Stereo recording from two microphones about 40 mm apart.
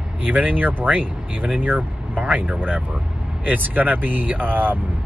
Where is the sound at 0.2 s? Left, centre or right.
Right.